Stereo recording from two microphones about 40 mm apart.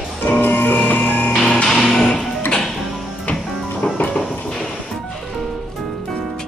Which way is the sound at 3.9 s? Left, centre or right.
Left.